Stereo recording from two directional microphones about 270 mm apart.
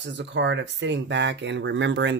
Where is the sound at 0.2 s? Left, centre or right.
Right.